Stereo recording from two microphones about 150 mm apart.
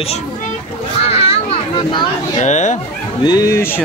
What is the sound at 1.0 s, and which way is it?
Children playing, 40° left (ahead or behind).